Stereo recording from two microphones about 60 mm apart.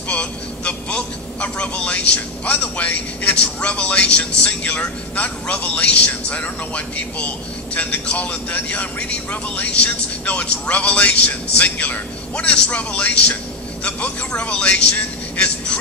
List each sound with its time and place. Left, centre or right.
0.1 s speech: left